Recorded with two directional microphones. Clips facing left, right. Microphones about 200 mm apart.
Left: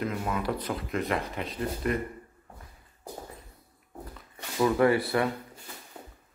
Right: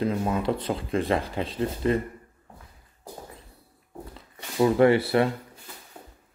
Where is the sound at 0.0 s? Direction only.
30° right (ahead or behind).